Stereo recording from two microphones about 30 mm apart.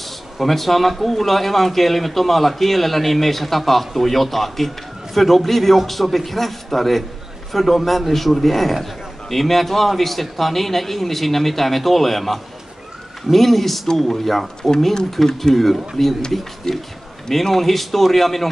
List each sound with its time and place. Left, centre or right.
0.0 s speech: centre
14.6 s speech: centre